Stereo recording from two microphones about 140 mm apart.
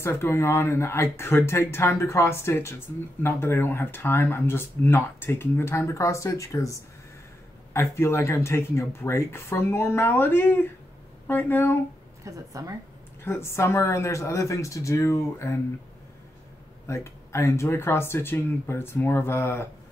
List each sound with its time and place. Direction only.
0.0 s speech: 15° left (ahead or behind)
12.3 s a woman's voice: 25° right (ahead or behind)
13.2 s speech: 15° left (ahead or behind)
16.8 s speech: 20° left (ahead or behind)